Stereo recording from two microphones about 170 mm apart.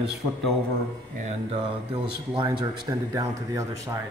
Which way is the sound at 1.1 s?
45° right (ahead or behind).